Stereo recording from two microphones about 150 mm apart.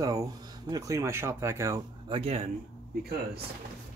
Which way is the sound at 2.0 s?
40° right (ahead or behind).